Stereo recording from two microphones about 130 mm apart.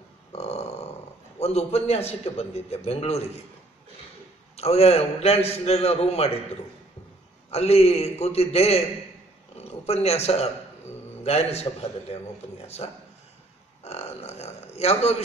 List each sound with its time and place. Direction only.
0.3 s a sound: 50° left (ahead or behind)
1.4 s a man's voice: 55° left (ahead or behind)
4.6 s a man's voice: 55° left (ahead or behind)
7.5 s a man's voice: 55° left (ahead or behind)